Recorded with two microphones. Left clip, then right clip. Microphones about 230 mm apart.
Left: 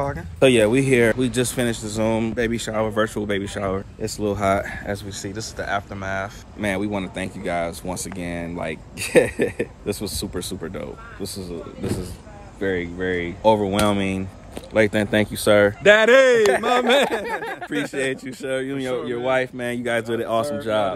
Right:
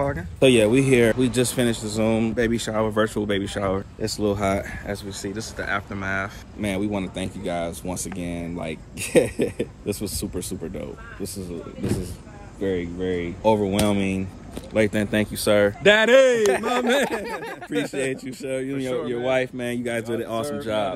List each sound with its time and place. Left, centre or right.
0.0 s speech: centre
4.6 s speech: left
5.2 s speech: left
12.5 s speech: centre
14.9 s speech: left
15.8 s speech: centre
16.9 s a man's voice: left
17.2 s speech: left
17.8 s a man's voice: centre
20.2 s speech: left